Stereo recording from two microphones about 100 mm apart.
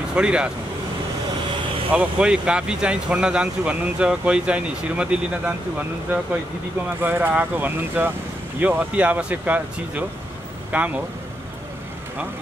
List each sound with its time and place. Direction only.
0.1 s speech: 10° right (ahead or behind)
1.9 s speech: 15° right (ahead or behind)